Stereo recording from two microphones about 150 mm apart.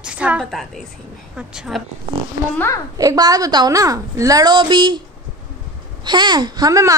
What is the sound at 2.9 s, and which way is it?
A woman's voice, 25° right (ahead or behind).